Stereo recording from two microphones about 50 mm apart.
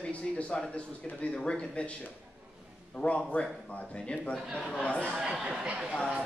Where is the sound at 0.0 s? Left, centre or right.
Centre.